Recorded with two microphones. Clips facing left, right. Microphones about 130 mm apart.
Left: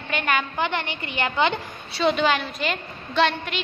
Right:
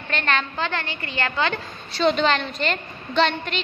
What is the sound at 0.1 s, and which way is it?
A woman's voice, 10° left (ahead or behind).